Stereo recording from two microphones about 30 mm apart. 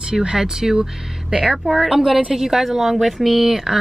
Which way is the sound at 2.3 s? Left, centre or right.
Centre.